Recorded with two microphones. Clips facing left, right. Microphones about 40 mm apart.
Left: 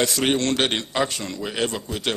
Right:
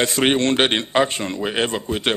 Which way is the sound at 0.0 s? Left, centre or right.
Right.